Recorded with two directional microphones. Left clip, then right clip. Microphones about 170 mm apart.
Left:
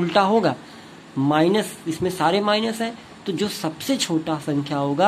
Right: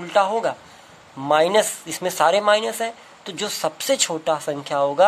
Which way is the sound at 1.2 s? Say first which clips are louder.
Right 3 dB; 25° right (ahead or behind).